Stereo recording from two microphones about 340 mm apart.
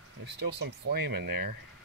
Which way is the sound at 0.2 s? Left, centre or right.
Right.